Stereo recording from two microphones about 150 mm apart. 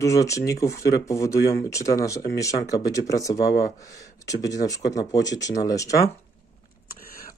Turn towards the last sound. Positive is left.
turn(degrees=20)  # may be behind; listen again after turning